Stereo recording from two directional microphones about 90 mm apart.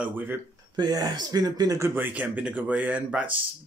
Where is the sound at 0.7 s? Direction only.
45° right (ahead or behind).